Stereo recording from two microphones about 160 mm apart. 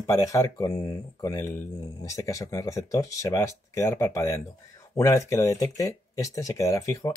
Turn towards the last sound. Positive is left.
turn(degrees=20)  # may be behind; listen again after turning